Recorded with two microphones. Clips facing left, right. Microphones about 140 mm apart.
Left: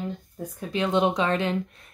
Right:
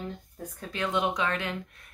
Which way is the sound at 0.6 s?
20° left (ahead or behind).